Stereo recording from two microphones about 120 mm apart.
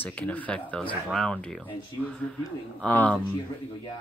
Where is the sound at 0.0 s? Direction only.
15° left (ahead or behind).